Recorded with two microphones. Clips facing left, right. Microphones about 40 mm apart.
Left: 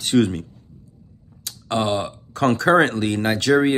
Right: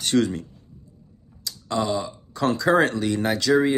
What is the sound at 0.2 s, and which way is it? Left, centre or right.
Speech, left.